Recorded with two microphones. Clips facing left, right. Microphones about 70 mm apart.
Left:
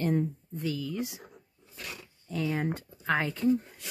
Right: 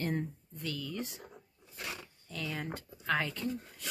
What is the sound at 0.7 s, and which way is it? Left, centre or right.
Speech, centre.